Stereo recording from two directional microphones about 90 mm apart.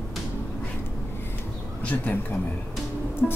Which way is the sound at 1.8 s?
20° left (ahead or behind).